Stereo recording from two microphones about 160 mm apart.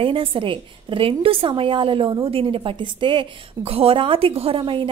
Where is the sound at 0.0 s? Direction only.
35° right (ahead or behind).